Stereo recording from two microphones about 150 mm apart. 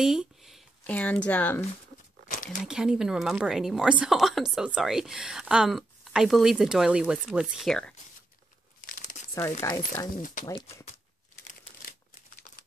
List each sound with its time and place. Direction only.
0.0 s a sound: 5° right (ahead or behind)
0.8 s speech: 10° left (ahead or behind)
2.2 s a sound: 65° left (ahead or behind)
2.6 s speech: 5° right (ahead or behind)
8.8 s crumpling: 60° left (ahead or behind)
9.3 s speech: 20° left (ahead or behind)